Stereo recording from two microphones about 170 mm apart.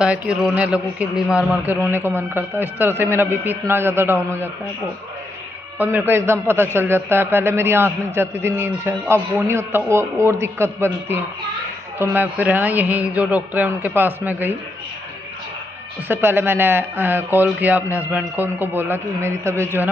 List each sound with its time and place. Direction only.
0.0 s a man's voice: 5° right (ahead or behind)
5.8 s a man's voice: 10° right (ahead or behind)
16.1 s a man's voice: 10° right (ahead or behind)